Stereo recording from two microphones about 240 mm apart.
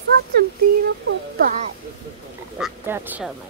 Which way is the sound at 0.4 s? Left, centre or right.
Right.